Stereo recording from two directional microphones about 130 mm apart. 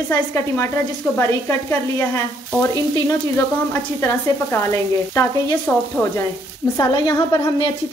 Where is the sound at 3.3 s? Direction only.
15° left (ahead or behind).